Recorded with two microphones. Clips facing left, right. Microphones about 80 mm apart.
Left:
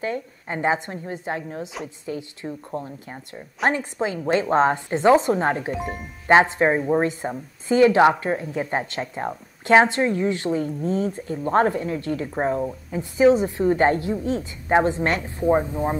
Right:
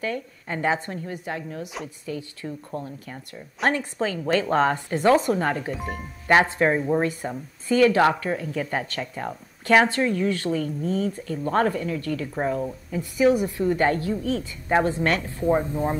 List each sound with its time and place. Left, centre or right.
0.0 s speech: left